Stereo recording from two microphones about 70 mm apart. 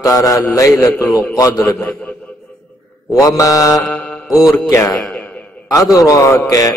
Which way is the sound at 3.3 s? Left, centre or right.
Left.